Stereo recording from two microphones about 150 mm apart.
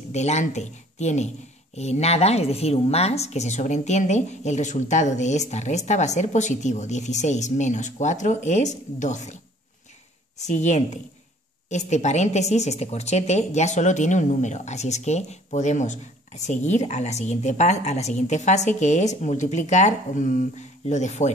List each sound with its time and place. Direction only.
0.1 s a woman's voice: 50° left (ahead or behind)
10.4 s a woman's voice: 50° left (ahead or behind)